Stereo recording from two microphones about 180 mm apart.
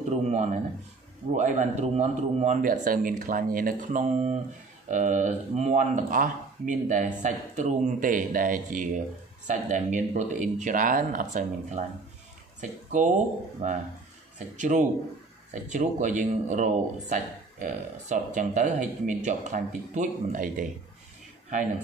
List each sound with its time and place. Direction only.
0.1 s a man's voice: 40° right (ahead or behind)